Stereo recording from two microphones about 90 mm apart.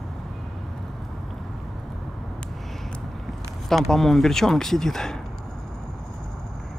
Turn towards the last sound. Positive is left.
turn(degrees=5)  # may be behind; listen again after turning